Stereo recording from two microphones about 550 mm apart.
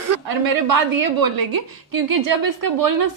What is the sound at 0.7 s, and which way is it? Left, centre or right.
A woman's voice, right.